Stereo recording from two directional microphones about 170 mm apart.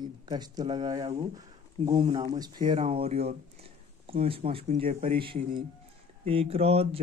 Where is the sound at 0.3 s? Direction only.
25° right (ahead or behind).